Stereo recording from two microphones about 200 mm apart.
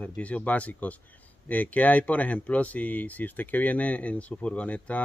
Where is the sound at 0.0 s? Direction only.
5° left (ahead or behind).